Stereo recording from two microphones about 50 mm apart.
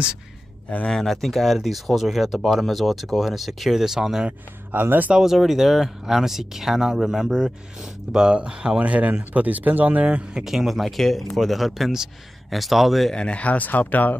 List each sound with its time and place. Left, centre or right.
0.8 s speech: centre
4.7 s speech: right
5.1 s speech: centre; by 10.2 s right
10.4 s speech: centre
13.1 s speech: left